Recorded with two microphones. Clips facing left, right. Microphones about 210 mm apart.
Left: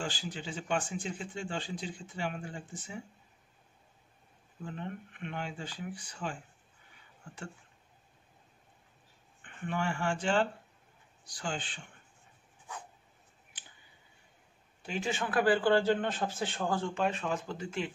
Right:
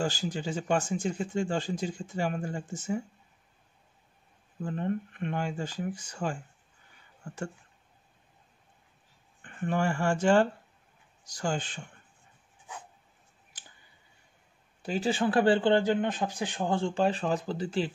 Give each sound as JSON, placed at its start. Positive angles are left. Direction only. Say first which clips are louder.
{"t": 0.0, "sound": "speech", "louder": "right 7 dB", "side_deg": -40}
{"t": 4.6, "sound": "speech", "louder": "right 9 dB", "side_deg": -45}
{"t": 9.4, "sound": "speech", "louder": "right 6 dB", "side_deg": -45}
{"t": 14.8, "sound": "speech", "louder": "right 6 dB", "side_deg": -35}
{"t": 16.7, "sound": "speech", "louder": "right 7 dB", "side_deg": -30}